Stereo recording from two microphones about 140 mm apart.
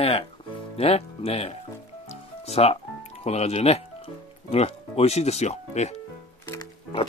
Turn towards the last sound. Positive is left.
turn(degrees=40)  # may be behind; listen again after turning